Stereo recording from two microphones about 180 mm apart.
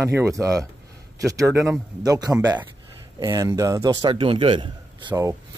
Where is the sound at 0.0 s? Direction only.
15° right (ahead or behind).